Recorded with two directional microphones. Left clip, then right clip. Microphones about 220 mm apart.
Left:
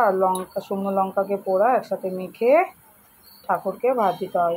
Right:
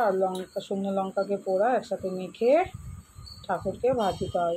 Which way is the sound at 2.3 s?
Centre (ahead or behind).